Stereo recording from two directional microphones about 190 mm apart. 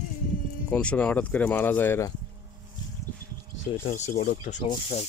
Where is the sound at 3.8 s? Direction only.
40° left (ahead or behind).